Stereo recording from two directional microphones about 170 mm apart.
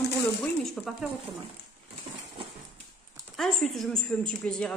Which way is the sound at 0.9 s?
Centre (ahead or behind).